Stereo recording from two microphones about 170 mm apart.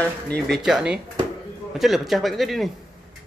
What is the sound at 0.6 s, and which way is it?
Speech, 5° right (ahead or behind).